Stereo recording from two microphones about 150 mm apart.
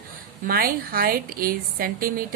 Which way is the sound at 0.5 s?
75° right (ahead or behind).